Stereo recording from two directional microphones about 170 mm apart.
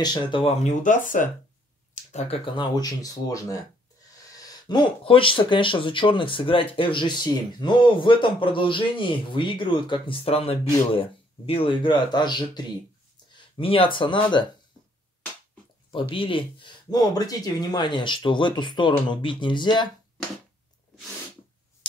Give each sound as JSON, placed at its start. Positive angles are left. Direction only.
{"t": 0.0, "sound": "speech", "side_deg": 25}
{"t": 0.7, "sound": "speech", "side_deg": 50}
{"t": 2.1, "sound": "speech", "side_deg": 35}
{"t": 15.9, "sound": "speech", "side_deg": 30}